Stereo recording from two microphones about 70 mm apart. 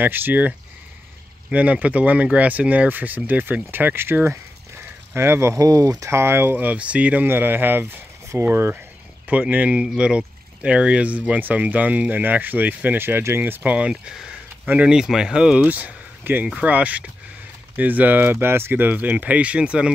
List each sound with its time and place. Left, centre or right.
0.0 s speech: right
6.0 s speech: right
9.3 s speech: right
13.7 s speech: centre
15.0 s speech: centre